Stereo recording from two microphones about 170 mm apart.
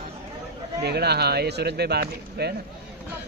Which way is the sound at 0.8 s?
75° right (ahead or behind).